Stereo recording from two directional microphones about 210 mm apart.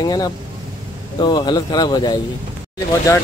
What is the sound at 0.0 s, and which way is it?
Speech, 20° left (ahead or behind).